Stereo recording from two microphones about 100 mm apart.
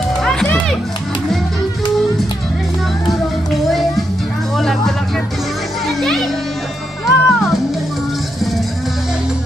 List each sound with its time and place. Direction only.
0.2 s music: 5° left (ahead or behind)
4.6 s music: centre (ahead or behind)
5.9 s children playing: centre (ahead or behind)
7.1 s music: centre (ahead or behind)